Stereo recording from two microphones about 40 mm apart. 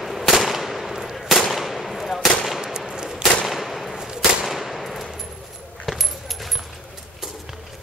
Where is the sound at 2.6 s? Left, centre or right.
Centre.